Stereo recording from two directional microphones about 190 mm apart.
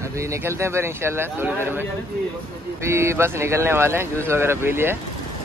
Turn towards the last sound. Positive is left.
turn(degrees=-10)  # may be behind; listen again after turning